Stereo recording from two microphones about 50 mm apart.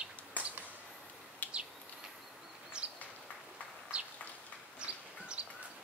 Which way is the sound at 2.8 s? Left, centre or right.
Right.